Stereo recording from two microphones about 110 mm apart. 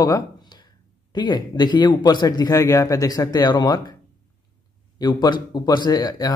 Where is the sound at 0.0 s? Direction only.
40° left (ahead or behind).